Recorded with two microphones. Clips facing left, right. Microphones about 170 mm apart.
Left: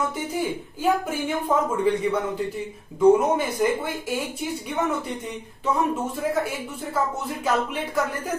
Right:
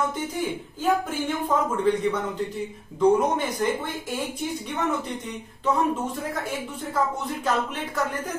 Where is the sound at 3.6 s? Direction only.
10° left (ahead or behind).